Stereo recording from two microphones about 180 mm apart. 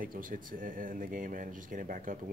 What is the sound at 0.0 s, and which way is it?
Speech, 50° right (ahead or behind).